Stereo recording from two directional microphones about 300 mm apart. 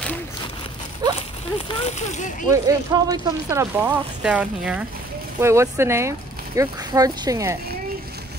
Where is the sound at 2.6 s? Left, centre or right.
Centre.